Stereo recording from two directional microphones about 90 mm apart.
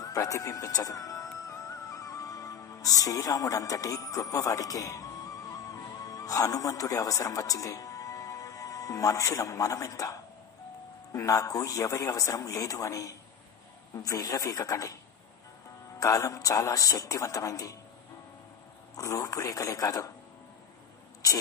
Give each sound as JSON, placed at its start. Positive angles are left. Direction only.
{"t": 0.0, "sound": "music", "side_deg": 40}
{"t": 11.1, "sound": "a man's voice", "side_deg": 40}
{"t": 16.0, "sound": "a man's voice", "side_deg": 40}
{"t": 18.9, "sound": "a man's voice", "side_deg": 35}